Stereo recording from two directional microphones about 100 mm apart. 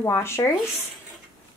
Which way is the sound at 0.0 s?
25° left (ahead or behind).